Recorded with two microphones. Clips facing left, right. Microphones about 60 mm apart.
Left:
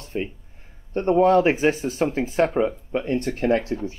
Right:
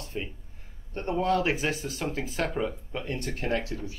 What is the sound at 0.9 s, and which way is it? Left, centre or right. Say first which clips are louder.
Speech: left 10 dB; left.